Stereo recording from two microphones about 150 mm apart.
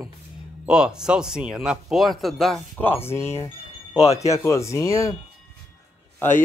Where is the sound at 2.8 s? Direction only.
15° left (ahead or behind).